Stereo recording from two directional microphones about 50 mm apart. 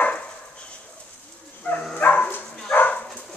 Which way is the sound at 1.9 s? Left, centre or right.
Left.